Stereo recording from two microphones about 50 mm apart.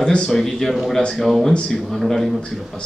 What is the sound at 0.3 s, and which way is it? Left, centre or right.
A man's voice, centre.